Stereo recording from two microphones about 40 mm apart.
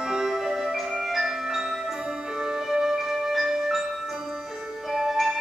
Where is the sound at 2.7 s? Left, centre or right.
Centre.